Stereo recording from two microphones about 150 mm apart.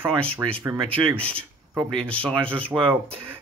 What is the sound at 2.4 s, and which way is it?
Speech, 35° right (ahead or behind).